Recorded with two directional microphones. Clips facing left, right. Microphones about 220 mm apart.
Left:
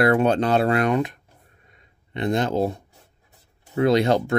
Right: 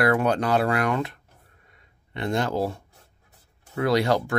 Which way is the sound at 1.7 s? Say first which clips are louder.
Left 4 dB; 20° left (ahead or behind).